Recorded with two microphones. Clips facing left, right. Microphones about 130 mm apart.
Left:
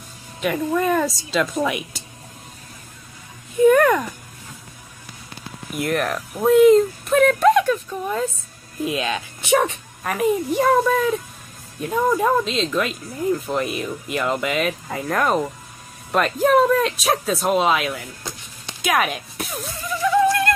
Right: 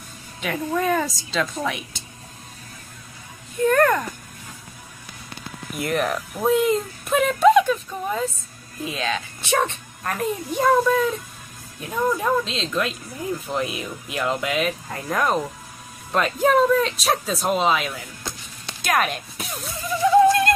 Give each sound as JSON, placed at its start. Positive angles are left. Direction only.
{"t": 0.4, "sound": "speech", "side_deg": 0}
{"t": 3.6, "sound": "a sound", "side_deg": 5}
{"t": 5.8, "sound": "speech", "side_deg": 0}
{"t": 20.0, "sound": "music", "side_deg": -25}